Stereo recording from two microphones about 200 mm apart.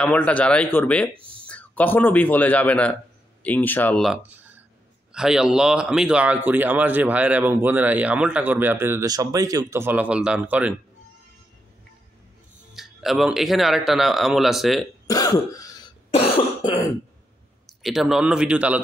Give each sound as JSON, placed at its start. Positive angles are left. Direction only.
{"t": 0.0, "sound": "speech", "side_deg": 5}
{"t": 1.1, "sound": "a sound", "side_deg": -25}
{"t": 1.5, "sound": "speech", "side_deg": 5}
{"t": 12.7, "sound": "speech", "side_deg": 0}
{"t": 15.0, "sound": "throat clearing", "side_deg": 20}
{"t": 16.1, "sound": "cough", "side_deg": 30}
{"t": 17.6, "sound": "speech", "side_deg": 0}